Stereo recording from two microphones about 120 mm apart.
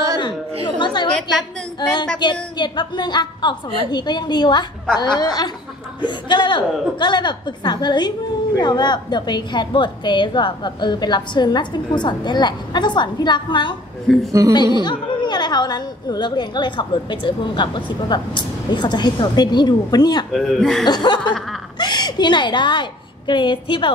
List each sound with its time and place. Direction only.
0.7 s chatter: 40° left (ahead or behind)
1.8 s a woman's voice: 35° left (ahead or behind)
14.1 s speech: centre (ahead or behind)
14.5 s a woman's voice: 35° left (ahead or behind)
20.3 s speech: 5° left (ahead or behind)
20.8 s a woman's voice: 35° left (ahead or behind)